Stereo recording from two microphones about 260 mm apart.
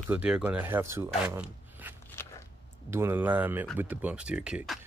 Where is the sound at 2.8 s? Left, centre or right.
Centre.